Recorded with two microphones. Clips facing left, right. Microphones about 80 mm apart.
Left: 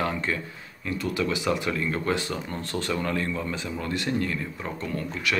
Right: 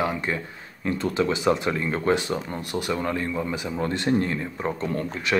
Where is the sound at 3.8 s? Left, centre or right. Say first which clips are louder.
Right 5 dB; right.